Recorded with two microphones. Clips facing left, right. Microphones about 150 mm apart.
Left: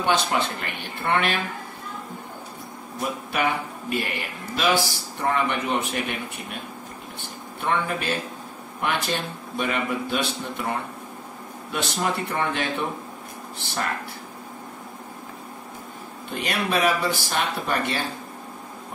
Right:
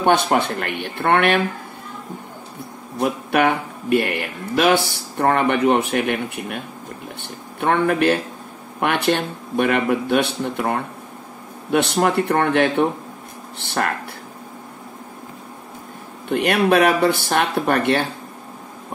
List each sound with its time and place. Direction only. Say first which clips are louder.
0.0 s speech: right 6 dB; 55° right (ahead or behind)
3.0 s speech: right 8 dB; 60° right (ahead or behind)
7.2 s a sound: right 7 dB; 60° right (ahead or behind)
8.7 s speech: right 7 dB; 60° right (ahead or behind)
16.3 s speech: right 10 dB; 60° right (ahead or behind)